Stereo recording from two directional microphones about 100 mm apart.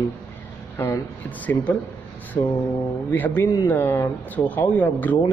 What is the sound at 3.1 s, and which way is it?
Speech, 20° left (ahead or behind).